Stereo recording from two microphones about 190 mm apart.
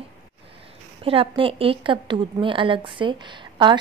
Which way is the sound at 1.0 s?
30° right (ahead or behind).